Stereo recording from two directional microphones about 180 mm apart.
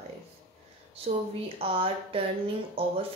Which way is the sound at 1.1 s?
35° right (ahead or behind).